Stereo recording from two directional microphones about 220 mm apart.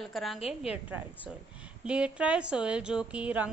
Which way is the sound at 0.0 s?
Centre (ahead or behind).